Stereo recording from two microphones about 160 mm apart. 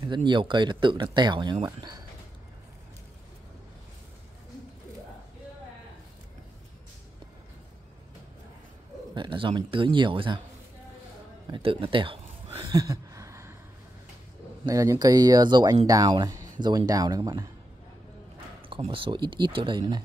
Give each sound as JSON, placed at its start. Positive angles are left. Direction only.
{"t": 0.0, "sound": "speech", "side_deg": -30}
{"t": 9.1, "sound": "speech", "side_deg": -30}
{"t": 11.5, "sound": "a sound", "side_deg": -35}
{"t": 14.7, "sound": "speech", "side_deg": -20}
{"t": 18.7, "sound": "speech", "side_deg": -35}